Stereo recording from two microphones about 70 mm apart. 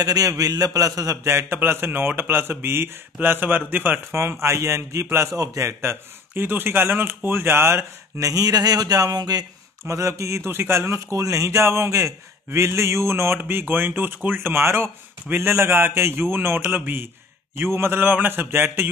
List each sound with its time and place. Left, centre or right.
0.0 s speech: right
1.1 s speech: right
4.1 s speech: right
8.2 s speech: right
9.8 s speech: right